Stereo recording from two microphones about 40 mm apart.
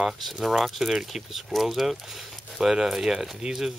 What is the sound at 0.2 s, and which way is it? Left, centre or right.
Speech, centre.